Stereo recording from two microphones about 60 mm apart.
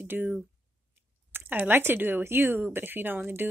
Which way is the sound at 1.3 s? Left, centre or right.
Right.